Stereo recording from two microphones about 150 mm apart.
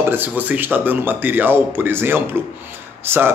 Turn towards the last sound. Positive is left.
turn(degrees=-15)  # may be behind; listen again after turning